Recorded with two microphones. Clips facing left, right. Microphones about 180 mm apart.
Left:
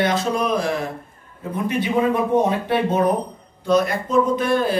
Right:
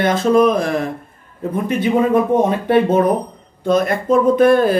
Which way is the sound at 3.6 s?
50° right (ahead or behind).